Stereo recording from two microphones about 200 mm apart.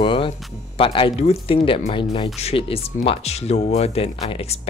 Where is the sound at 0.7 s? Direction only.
25° left (ahead or behind).